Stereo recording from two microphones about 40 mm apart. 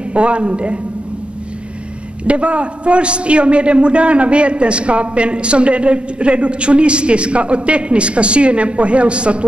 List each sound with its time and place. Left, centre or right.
0.1 s a man's voice: right
2.2 s a man's voice: right